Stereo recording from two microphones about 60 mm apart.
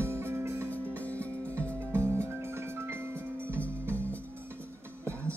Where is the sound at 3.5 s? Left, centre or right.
Left.